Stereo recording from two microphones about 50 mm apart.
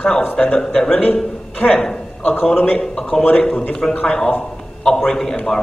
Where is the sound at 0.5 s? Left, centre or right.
Centre.